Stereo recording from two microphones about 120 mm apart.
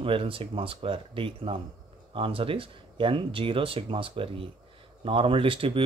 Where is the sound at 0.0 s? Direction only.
50° right (ahead or behind).